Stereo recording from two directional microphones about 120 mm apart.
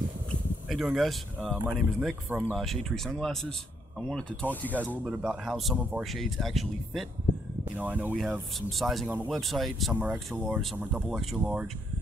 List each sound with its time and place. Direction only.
0.7 s speech: centre (ahead or behind)
5.0 s speech: 5° right (ahead or behind)
7.7 s speech: 15° right (ahead or behind)
8.2 s speech: centre (ahead or behind)
10.3 s speech: 15° right (ahead or behind)
11.1 s speech: centre (ahead or behind)